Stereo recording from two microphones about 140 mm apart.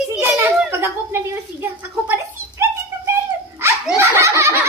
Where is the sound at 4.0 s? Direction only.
20° right (ahead or behind).